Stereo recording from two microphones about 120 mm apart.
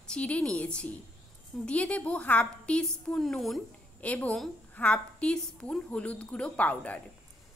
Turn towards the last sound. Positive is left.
turn(degrees=10)  # may be behind; listen again after turning